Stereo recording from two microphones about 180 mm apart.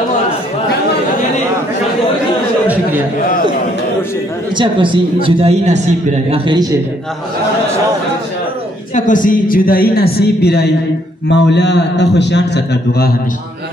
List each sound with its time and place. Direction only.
4.6 s speech: 25° right (ahead or behind)
6.3 s speech: 25° right (ahead or behind)
8.9 s a woman's voice: 45° left (ahead or behind); by 10.7 s 65° left (ahead or behind)
11.2 s a man's voice: 75° left (ahead or behind)